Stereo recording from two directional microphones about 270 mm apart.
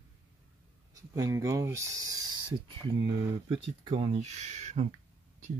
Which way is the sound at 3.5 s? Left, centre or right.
Centre.